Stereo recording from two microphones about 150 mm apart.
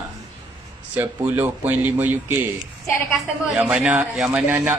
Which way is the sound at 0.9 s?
10° right (ahead or behind).